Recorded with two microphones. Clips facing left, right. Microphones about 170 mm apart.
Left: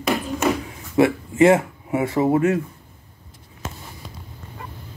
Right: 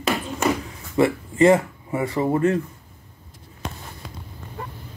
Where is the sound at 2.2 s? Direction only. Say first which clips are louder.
Left 1 dB; 5° left (ahead or behind).